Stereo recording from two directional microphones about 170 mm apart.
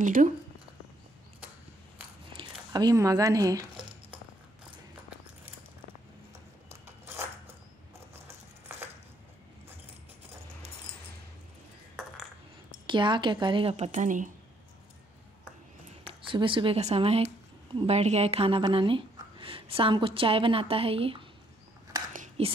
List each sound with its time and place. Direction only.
0.0 s speech: 50° right (ahead or behind)
2.3 s speech: 25° right (ahead or behind)
7.1 s a sound: 15° right (ahead or behind)
12.8 s a woman's voice: 30° right (ahead or behind); by 14.3 s 50° right (ahead or behind)
16.0 s speech: 30° right (ahead or behind)
22.4 s speech: 35° right (ahead or behind)